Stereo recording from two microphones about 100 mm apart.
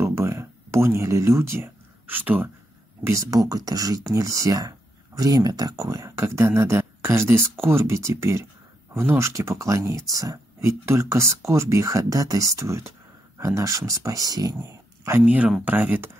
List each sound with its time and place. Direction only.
0.0 s a sound: 30° right (ahead or behind)
3.0 s speech: 30° right (ahead or behind)
15.2 s speech: 10° right (ahead or behind)